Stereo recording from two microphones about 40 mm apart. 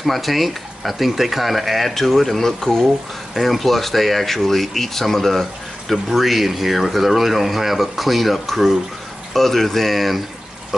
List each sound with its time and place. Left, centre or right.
0.0 s speech: centre